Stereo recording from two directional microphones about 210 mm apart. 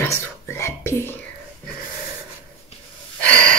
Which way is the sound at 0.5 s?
10° left (ahead or behind).